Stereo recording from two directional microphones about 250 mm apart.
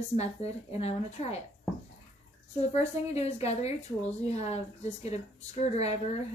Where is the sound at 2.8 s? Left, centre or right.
Left.